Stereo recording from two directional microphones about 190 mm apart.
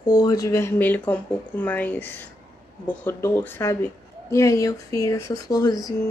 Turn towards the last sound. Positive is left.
turn(degrees=20)  # may be behind; listen again after turning